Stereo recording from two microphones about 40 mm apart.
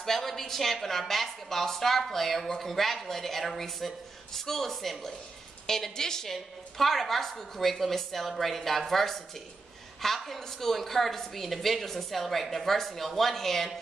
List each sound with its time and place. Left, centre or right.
0.0 s a woman's voice: centre